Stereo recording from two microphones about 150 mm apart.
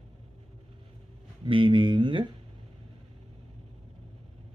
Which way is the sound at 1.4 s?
35° right (ahead or behind).